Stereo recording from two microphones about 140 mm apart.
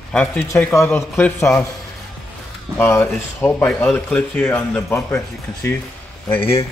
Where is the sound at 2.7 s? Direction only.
15° left (ahead or behind).